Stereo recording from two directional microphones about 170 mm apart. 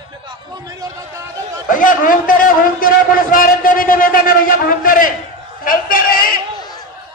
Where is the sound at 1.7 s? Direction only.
50° left (ahead or behind).